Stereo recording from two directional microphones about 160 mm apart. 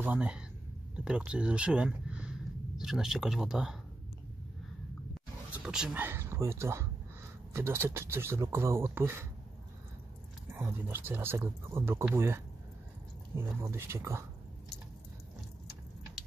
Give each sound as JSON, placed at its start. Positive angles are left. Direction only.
{"t": 0.0, "sound": "speech", "side_deg": -10}
{"t": 5.6, "sound": "speech", "side_deg": -5}
{"t": 10.5, "sound": "speech", "side_deg": -10}
{"t": 13.4, "sound": "speech", "side_deg": -15}